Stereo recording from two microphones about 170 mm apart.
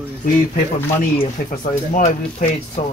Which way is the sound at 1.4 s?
60° left (ahead or behind).